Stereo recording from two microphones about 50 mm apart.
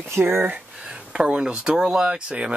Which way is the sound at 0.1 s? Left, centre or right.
Right.